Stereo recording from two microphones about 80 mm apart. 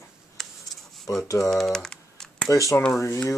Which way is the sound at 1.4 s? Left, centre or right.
Centre.